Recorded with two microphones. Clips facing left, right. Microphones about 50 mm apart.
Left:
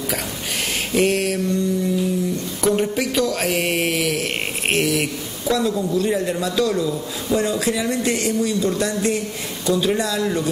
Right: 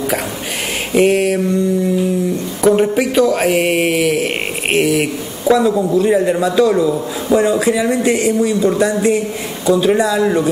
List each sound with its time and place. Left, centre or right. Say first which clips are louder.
0.9 s speech: right 7 dB; centre